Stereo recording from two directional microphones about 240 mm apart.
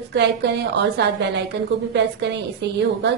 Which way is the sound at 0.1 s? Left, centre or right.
Right.